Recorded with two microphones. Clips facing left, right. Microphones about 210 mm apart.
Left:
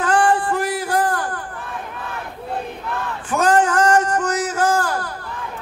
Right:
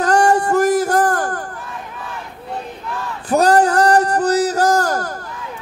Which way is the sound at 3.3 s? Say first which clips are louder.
Right 4 dB; 35° right (ahead or behind).